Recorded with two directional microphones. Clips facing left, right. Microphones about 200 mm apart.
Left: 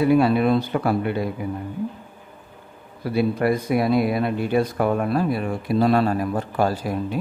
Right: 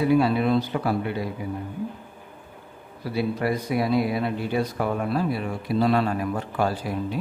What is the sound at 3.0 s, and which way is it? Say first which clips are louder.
Speech: left 4 dB; 55° left (ahead or behind).